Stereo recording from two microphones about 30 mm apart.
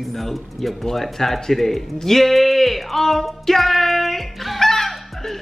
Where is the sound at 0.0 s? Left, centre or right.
Centre.